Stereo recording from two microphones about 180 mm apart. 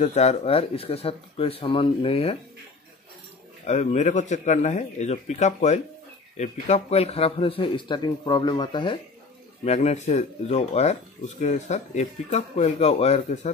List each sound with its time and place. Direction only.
0.0 s speech: 40° left (ahead or behind)
3.6 s speech: 40° left (ahead or behind)
9.7 s speech: 40° left (ahead or behind)